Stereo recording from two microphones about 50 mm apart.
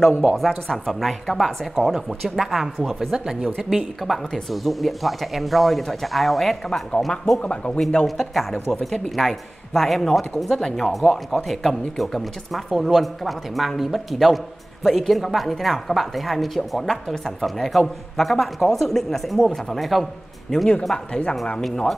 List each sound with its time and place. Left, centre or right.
0.1 s speech: centre
0.4 s speech: centre
2.8 s speech: centre
7.4 s speech: left
8.2 s speech: centre